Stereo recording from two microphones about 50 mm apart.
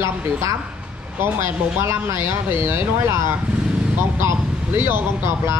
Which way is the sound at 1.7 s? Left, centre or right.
Right.